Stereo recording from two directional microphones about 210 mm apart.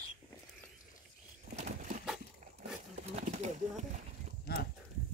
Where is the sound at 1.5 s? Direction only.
35° right (ahead or behind).